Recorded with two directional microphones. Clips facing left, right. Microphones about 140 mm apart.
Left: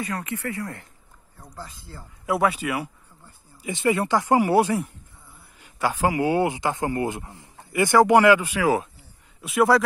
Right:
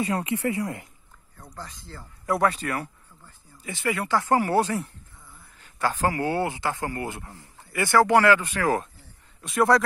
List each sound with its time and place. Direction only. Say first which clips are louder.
0.0 s speech: right 4 dB; 20° right (ahead or behind)
1.4 s speech: left 1 dB; 10° left (ahead or behind)